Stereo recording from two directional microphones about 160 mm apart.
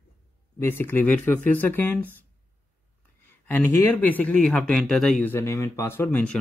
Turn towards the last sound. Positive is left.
turn(degrees=10)  # may be behind; listen again after turning